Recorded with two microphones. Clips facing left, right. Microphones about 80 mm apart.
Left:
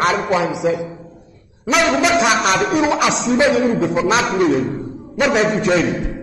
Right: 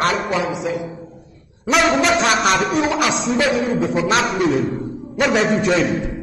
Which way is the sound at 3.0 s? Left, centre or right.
Left.